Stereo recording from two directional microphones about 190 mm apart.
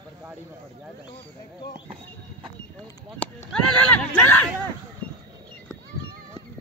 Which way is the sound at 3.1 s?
5° left (ahead or behind).